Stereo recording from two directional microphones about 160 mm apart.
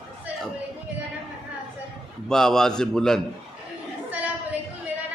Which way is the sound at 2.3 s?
5° left (ahead or behind).